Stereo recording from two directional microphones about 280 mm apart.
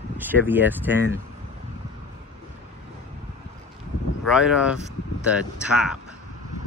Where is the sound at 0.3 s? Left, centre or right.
Centre.